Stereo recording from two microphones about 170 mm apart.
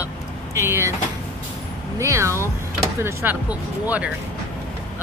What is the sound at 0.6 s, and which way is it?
Speech, 15° right (ahead or behind).